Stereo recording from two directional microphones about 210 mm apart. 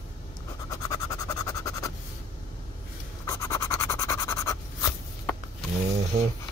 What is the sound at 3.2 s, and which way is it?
Pant, 15° left (ahead or behind).